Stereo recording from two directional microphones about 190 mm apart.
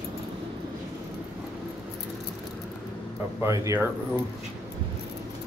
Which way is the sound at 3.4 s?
15° right (ahead or behind).